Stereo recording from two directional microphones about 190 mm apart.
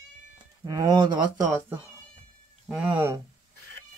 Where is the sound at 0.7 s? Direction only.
20° right (ahead or behind).